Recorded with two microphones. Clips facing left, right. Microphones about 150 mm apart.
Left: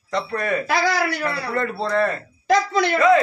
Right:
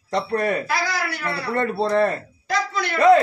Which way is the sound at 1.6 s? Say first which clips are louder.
Right 3 dB; 30° right (ahead or behind).